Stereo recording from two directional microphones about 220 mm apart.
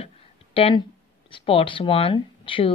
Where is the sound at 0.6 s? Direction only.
25° left (ahead or behind).